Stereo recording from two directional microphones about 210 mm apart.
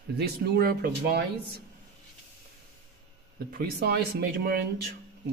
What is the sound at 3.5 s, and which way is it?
Speech, 50° right (ahead or behind).